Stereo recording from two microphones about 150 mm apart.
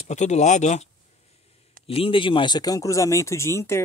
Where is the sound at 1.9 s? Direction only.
35° left (ahead or behind); by 3.8 s 15° left (ahead or behind).